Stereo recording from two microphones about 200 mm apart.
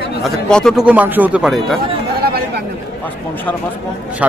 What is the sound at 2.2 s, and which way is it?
Chatter, 50° right (ahead or behind).